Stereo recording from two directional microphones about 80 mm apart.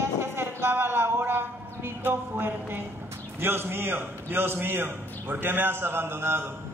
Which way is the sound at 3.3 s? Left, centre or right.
Right.